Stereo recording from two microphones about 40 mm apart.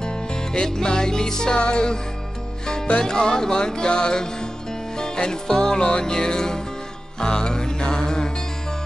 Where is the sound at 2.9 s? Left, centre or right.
Centre.